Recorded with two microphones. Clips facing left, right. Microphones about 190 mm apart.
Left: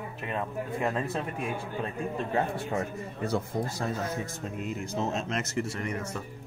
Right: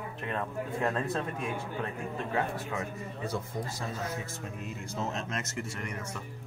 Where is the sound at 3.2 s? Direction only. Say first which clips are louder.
Left 6 dB; 65° left (ahead or behind).